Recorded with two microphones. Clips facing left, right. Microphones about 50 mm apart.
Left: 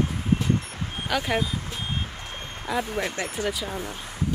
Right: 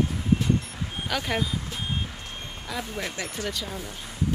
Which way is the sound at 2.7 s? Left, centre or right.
Centre.